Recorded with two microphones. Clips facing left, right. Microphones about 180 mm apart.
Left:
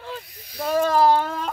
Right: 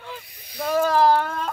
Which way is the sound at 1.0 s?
20° left (ahead or behind).